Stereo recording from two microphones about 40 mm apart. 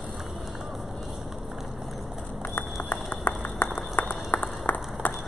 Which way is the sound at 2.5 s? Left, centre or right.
Left.